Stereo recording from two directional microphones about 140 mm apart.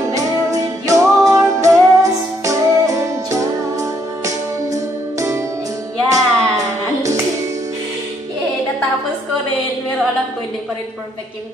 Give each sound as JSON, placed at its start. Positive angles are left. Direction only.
{"t": 0.1, "sound": "music", "side_deg": -25}
{"t": 6.0, "sound": "music", "side_deg": -25}